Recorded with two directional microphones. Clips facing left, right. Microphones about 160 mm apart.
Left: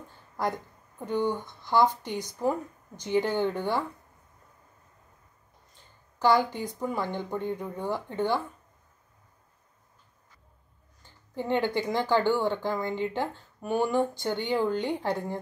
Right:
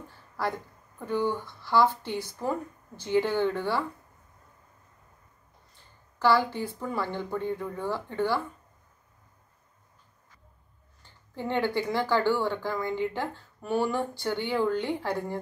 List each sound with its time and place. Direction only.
0.4 s speech: 20° left (ahead or behind)
6.1 s speech: 20° left (ahead or behind)
11.3 s speech: 15° left (ahead or behind)